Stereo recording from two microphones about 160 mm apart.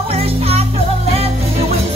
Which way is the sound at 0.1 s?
40° right (ahead or behind).